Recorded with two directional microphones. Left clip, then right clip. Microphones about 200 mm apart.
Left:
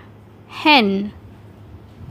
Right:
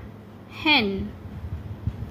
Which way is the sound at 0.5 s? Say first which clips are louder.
Left 7 dB; 40° left (ahead or behind).